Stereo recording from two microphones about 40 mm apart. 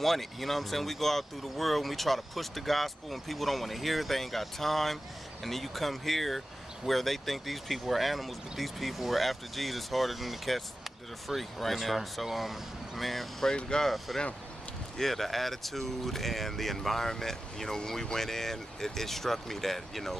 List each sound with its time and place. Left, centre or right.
0.0 s speech: centre
13.6 s speech: left
13.8 s speech: centre